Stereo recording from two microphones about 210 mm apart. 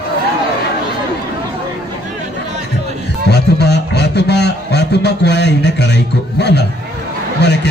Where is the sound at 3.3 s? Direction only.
50° left (ahead or behind).